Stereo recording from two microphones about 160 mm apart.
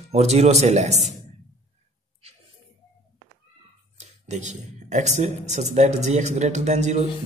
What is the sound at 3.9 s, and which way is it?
A man's voice, 45° right (ahead or behind).